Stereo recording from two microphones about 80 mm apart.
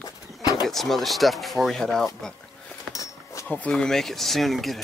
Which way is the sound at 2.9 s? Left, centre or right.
Left.